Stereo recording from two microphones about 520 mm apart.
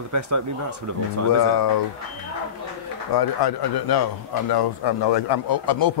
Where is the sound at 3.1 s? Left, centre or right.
Left.